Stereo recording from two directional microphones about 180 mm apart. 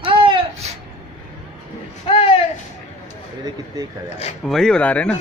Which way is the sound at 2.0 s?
30° left (ahead or behind).